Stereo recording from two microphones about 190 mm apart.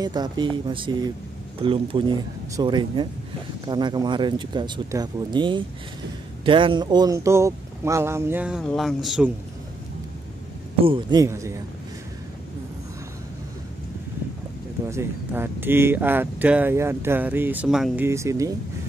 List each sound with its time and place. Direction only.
0.0 s speech: 20° right (ahead or behind); by 9.3 s centre (ahead or behind)
10.8 s speech: 25° right (ahead or behind)
14.9 s speech: 15° right (ahead or behind)
18.0 s speech: 15° right (ahead or behind)